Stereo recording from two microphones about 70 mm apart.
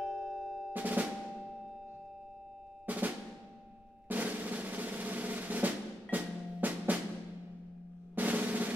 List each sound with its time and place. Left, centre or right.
0.0 s music: centre
0.7 s drum: right
2.9 s drum: right
4.1 s drum roll: right
8.2 s drum: right